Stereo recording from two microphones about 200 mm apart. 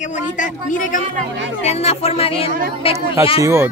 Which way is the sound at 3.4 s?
15° right (ahead or behind).